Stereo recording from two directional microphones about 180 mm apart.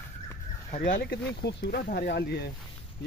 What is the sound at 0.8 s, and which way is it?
Speech, 60° left (ahead or behind).